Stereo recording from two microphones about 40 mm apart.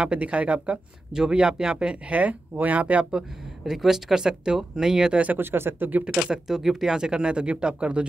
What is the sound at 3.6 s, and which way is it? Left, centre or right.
Speech, centre.